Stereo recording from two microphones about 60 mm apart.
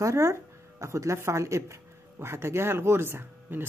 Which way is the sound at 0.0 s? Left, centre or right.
Right.